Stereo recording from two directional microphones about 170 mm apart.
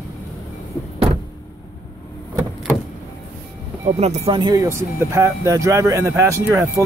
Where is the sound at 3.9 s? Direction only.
40° right (ahead or behind).